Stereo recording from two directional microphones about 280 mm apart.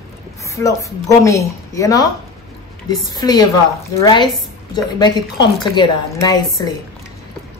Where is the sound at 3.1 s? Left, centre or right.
Centre.